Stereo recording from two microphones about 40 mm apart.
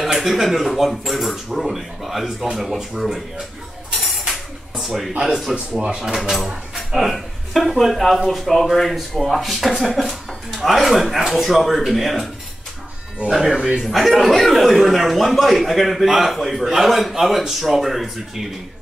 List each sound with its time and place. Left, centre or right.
0.0 s speech: centre
4.3 s a sound: centre
5.7 s speech: right
6.0 s speech: centre
13.3 s speech: centre